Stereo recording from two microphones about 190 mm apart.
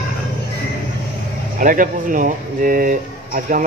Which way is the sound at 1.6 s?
45° right (ahead or behind).